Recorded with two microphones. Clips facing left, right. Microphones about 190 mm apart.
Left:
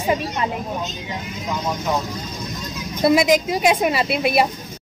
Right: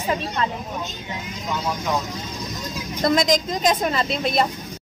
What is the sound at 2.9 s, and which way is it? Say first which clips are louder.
A woman's voice: left 4 dB; 10° left (ahead or behind).